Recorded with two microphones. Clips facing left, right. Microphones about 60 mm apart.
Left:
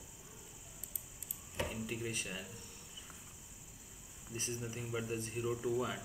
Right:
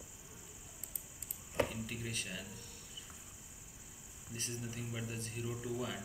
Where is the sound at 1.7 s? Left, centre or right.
Centre.